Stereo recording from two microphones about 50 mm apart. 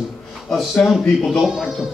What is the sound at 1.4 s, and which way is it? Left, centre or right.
Speech, centre.